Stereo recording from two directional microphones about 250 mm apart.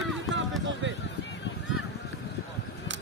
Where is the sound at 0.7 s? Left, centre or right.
Right.